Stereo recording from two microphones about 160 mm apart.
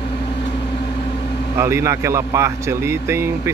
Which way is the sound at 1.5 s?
20° right (ahead or behind).